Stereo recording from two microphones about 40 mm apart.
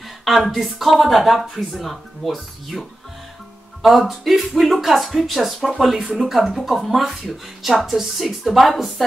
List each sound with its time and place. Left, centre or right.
0.2 s speech: centre
3.8 s speech: centre